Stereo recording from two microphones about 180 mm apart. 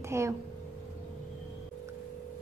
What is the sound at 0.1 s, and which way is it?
Speech, 15° right (ahead or behind).